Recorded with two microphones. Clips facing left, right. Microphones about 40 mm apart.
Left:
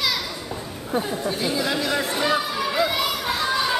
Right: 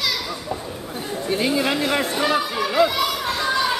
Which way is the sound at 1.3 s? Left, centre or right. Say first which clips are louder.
Right 6 dB; right.